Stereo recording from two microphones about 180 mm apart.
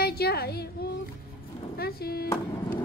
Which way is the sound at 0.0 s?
60° left (ahead or behind).